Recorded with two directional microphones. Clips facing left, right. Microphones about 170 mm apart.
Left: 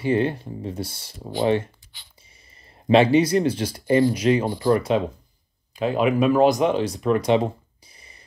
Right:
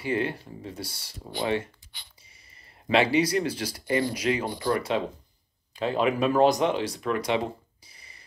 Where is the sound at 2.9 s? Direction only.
25° left (ahead or behind).